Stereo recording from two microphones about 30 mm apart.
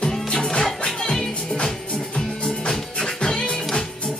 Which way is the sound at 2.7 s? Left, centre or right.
Left.